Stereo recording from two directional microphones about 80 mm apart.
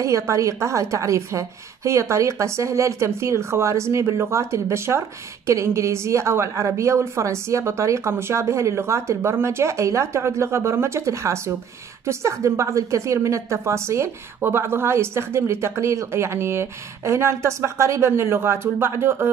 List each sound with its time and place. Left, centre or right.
0.0 s a woman's voice: right